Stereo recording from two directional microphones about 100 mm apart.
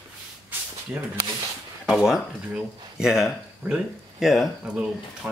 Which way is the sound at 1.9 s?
5° right (ahead or behind).